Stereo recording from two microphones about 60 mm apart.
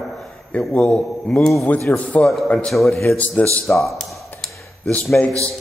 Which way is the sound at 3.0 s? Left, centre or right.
Left.